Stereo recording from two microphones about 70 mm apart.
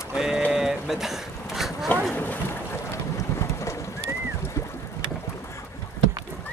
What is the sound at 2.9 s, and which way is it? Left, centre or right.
Boat, left.